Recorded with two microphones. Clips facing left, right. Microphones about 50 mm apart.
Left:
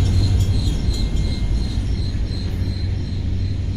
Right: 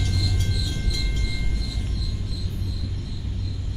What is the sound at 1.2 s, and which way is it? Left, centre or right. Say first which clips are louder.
Cricket: left 5 dB; left.